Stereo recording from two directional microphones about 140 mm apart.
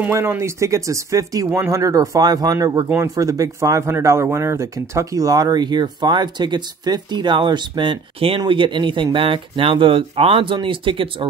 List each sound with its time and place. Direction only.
0.0 s speech: 15° right (ahead or behind); by 11.2 s 35° right (ahead or behind)